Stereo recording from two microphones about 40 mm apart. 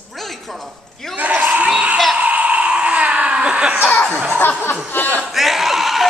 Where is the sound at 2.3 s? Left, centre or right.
Right.